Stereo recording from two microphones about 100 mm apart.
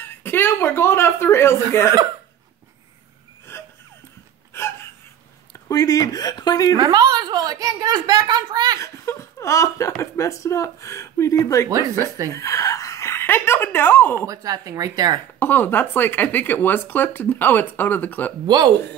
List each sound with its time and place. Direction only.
0.0 s speech: 20° left (ahead or behind)
3.5 s wheeze: 25° left (ahead or behind)
4.5 s hiccup: 25° left (ahead or behind)
5.7 s speech: 35° left (ahead or behind)
6.8 s speech: 45° right (ahead or behind)
8.7 s speech: 30° left (ahead or behind)
14.1 s speech: 35° right (ahead or behind)
15.3 s speech: 20° left (ahead or behind)
18.5 s speech: 45° right (ahead or behind)